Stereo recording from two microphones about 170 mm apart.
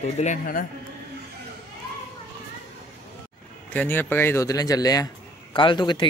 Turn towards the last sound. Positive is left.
turn(degrees=25)  # may be behind; listen again after turning